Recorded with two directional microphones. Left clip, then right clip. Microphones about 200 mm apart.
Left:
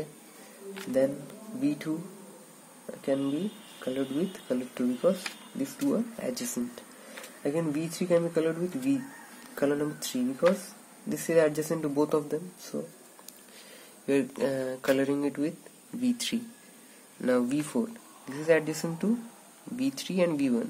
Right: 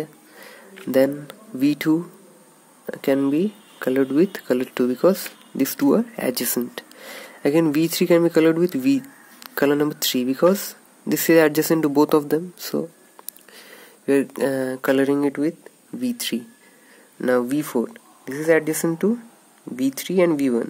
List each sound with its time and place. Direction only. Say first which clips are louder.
0.9 s speech: right 8 dB; 50° right (ahead or behind)
3.0 s speech: right 10 dB; 50° right (ahead or behind)
13.7 s speech: right 8 dB; 35° right (ahead or behind)